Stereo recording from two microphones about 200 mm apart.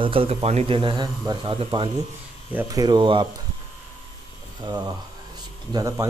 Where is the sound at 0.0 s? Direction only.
25° right (ahead or behind).